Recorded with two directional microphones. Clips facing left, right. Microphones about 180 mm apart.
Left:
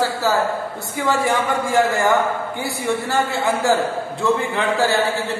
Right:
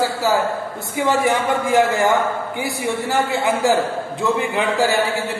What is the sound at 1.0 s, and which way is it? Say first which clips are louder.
A man's voice: right 2 dB; 20° right (ahead or behind).